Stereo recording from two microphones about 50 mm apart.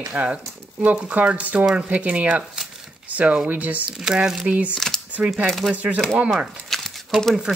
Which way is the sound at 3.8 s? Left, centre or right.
Centre.